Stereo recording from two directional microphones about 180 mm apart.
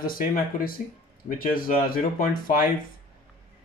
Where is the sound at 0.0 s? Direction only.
55° left (ahead or behind).